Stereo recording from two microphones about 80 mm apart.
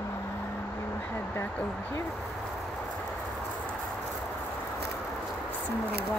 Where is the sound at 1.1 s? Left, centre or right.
Left.